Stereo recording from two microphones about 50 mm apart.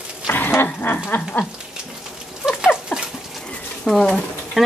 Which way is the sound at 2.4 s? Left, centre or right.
Centre.